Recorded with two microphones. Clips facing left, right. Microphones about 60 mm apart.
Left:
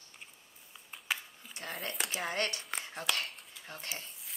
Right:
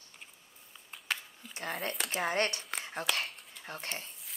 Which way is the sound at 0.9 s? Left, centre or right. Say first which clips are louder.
Even; centre.